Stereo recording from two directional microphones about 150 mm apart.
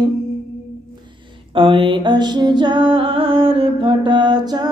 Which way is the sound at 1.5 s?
35° right (ahead or behind).